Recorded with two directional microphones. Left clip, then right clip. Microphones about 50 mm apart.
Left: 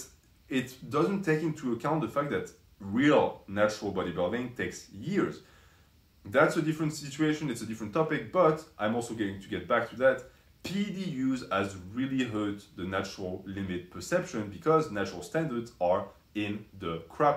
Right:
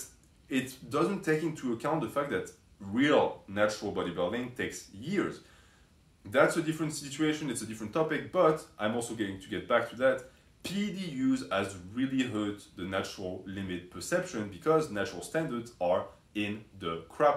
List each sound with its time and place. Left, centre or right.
0.5 s speech: centre
6.3 s speech: centre
10.6 s speech: centre